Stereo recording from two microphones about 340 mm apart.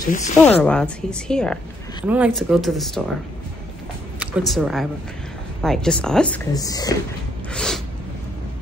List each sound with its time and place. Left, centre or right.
0.0 s speech: left
0.4 s speech: centre
4.2 s speech: centre
7.5 s a sound: centre